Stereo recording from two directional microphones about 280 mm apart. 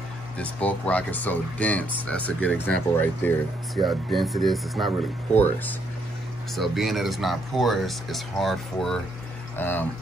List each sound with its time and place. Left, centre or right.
0.4 s speech: centre